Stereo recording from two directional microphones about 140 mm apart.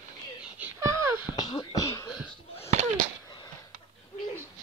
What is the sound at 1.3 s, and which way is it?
Beatboxing, 30° left (ahead or behind).